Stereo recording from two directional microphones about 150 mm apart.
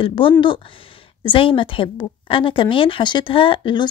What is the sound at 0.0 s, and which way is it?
A woman's voice, 35° left (ahead or behind).